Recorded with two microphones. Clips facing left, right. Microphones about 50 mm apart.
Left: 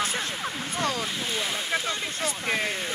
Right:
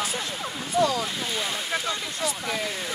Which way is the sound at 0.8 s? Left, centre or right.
Left.